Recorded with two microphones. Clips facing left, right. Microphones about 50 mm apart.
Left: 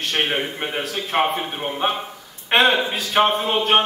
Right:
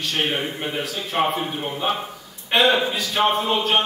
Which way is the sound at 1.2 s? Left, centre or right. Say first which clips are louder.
Even; centre.